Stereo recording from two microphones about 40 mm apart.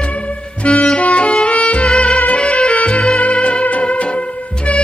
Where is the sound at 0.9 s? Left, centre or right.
Left.